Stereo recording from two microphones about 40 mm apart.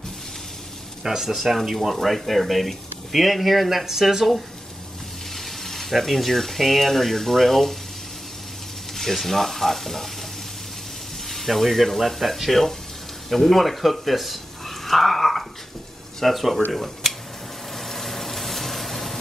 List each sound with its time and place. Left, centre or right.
1.0 s speech: centre
1.4 s speech: centre
5.3 s speech: centre
8.9 s speech: centre
11.2 s speech: centre
17.7 s vehicle: centre